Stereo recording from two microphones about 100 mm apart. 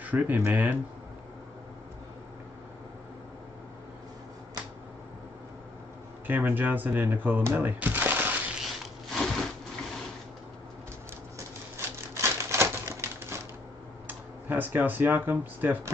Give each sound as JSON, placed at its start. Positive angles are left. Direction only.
{"t": 0.0, "sound": "speech", "side_deg": -15}
{"t": 6.2, "sound": "speech", "side_deg": -20}
{"t": 9.1, "sound": "wood", "side_deg": 5}
{"t": 11.3, "sound": "typewriter", "side_deg": -25}
{"t": 14.0, "sound": "speech", "side_deg": -20}